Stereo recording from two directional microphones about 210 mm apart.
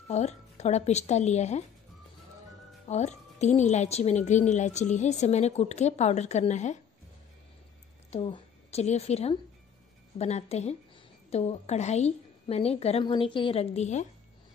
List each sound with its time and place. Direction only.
0.1 s a woman's voice: 30° left (ahead or behind)
2.9 s a woman's voice: 30° left (ahead or behind)
8.1 s a woman's voice: 30° left (ahead or behind)